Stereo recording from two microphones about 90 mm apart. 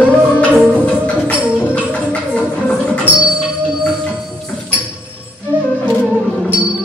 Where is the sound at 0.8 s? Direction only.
15° left (ahead or behind).